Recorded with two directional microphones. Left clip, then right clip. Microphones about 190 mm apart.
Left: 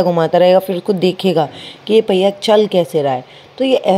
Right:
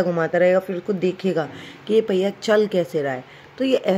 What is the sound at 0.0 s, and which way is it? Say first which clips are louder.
A woman's voice: left 7 dB; 15° left (ahead or behind).